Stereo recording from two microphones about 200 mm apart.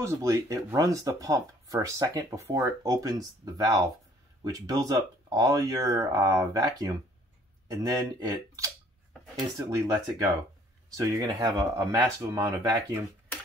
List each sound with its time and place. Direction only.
0.0 s speech: 15° right (ahead or behind)